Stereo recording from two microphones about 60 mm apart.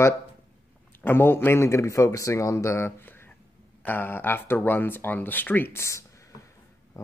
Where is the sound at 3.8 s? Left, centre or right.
Left.